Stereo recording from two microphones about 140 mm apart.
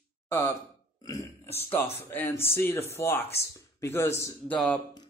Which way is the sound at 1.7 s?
15° left (ahead or behind).